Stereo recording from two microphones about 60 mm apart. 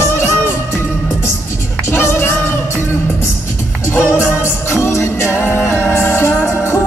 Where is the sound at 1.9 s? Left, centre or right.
Left.